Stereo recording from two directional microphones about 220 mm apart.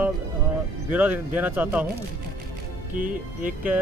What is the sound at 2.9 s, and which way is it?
Speech, 40° right (ahead or behind).